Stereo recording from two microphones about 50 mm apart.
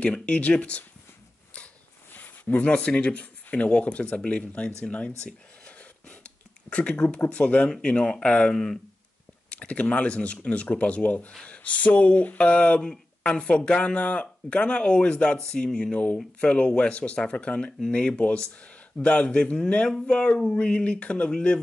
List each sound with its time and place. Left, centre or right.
0.0 s speech: left
2.1 s speech: left
5.2 s a sound: left
7.2 s speech: left
17.7 s speech: centre